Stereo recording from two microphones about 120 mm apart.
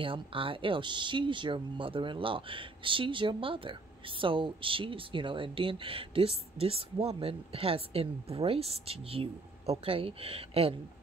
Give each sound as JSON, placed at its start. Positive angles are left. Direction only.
{"t": 0.0, "sound": "speech", "side_deg": -45}